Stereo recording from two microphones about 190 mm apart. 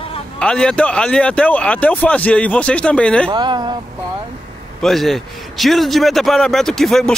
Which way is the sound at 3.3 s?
25° right (ahead or behind).